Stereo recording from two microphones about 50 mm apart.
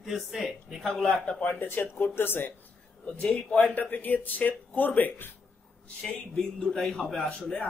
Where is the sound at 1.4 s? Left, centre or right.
Left.